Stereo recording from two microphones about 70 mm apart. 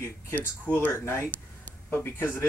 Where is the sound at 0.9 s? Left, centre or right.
Left.